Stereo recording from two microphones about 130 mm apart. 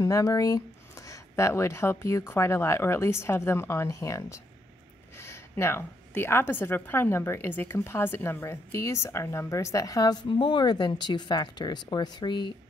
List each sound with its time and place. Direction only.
0.0 s a woman's voice: 25° left (ahead or behind)